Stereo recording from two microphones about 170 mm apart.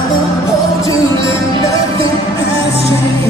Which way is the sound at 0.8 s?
20° left (ahead or behind).